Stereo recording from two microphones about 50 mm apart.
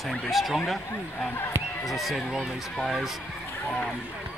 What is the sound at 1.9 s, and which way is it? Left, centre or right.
Speech, centre.